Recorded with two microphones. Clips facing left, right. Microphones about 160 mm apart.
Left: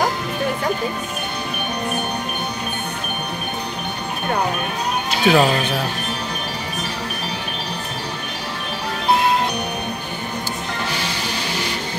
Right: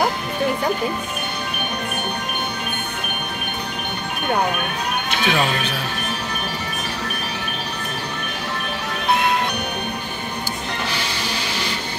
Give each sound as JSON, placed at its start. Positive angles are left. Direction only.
{"t": 5.1, "sound": "speech", "side_deg": 35}